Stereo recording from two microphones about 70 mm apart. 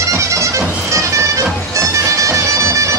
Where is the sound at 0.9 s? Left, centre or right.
Right.